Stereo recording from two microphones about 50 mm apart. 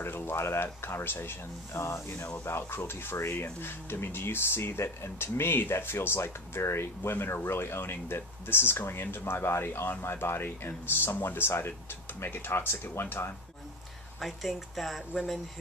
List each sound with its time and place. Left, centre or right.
0.0 s speech: left
1.8 s speech: left
2.4 s speech: left
14.2 s speech: centre